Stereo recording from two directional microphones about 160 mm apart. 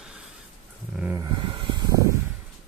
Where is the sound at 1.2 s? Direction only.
30° right (ahead or behind).